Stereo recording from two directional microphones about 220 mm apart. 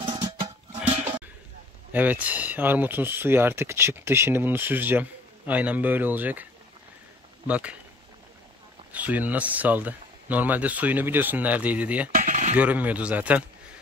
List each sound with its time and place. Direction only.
1.9 s speech: 5° right (ahead or behind)
7.4 s speech: 5° right (ahead or behind)
8.9 s speech: 5° right (ahead or behind)
12.2 s dishes: 35° right (ahead or behind)
12.5 s speech: 5° right (ahead or behind)